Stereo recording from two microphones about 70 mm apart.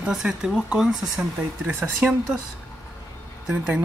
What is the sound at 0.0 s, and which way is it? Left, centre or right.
Speech, centre.